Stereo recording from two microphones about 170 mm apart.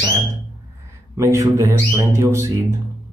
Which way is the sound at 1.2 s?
20° right (ahead or behind).